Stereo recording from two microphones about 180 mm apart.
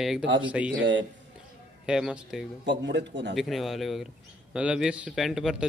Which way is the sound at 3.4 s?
Centre (ahead or behind).